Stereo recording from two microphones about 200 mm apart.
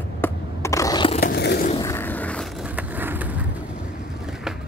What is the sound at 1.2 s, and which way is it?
Skateboard, 55° left (ahead or behind).